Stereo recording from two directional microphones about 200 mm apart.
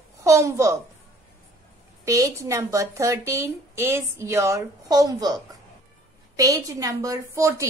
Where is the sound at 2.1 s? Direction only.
15° right (ahead or behind).